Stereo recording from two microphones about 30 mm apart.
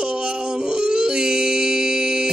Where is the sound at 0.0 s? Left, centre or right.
Right.